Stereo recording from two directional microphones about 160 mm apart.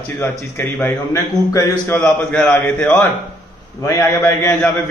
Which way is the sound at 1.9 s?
5° left (ahead or behind).